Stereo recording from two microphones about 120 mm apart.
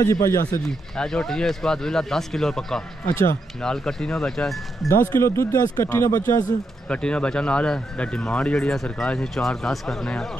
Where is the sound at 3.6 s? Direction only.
5° left (ahead or behind).